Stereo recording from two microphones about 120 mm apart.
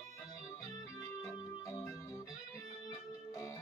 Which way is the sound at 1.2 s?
25° left (ahead or behind).